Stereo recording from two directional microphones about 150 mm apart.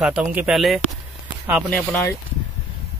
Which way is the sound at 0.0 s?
10° right (ahead or behind).